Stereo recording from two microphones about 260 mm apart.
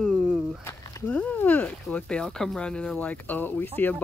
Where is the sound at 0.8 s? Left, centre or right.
Centre.